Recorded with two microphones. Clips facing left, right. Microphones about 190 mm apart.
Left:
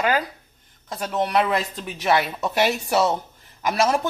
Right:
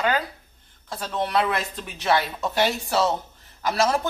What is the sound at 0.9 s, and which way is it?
Speech, 15° left (ahead or behind).